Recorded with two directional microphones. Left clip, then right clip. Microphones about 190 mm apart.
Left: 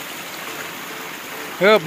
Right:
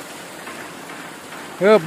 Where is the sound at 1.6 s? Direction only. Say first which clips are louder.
Even; 10° right (ahead or behind).